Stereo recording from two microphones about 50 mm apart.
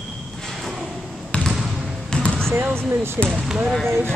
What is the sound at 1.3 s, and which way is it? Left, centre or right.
Basketball bounce, left.